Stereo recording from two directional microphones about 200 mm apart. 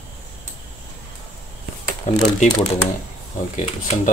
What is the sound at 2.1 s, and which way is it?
Speech, 40° left (ahead or behind).